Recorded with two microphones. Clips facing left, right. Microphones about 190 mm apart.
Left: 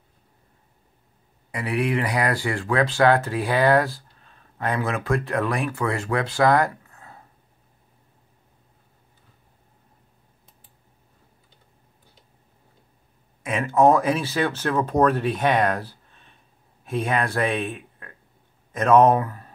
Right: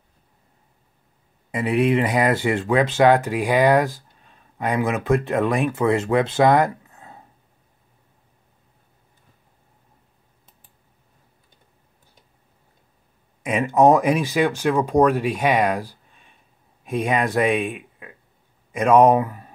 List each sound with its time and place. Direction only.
1.5 s speech: 20° right (ahead or behind)
13.4 s speech: 15° right (ahead or behind)